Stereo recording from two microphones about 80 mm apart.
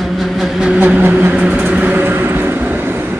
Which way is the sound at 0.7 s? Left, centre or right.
Centre.